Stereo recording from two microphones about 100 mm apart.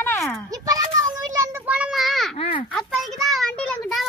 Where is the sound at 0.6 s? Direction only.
35° right (ahead or behind).